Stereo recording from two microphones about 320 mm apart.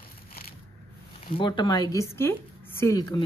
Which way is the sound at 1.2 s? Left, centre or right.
Centre.